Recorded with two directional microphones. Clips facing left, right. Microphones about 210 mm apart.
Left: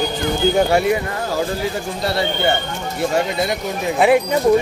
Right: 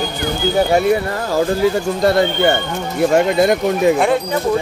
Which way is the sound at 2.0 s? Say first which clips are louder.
Right 6 dB; 45° right (ahead or behind).